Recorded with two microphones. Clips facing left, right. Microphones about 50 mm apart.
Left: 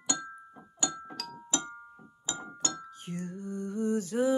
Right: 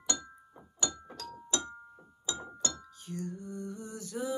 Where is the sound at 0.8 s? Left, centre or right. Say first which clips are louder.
Left 3 dB; left.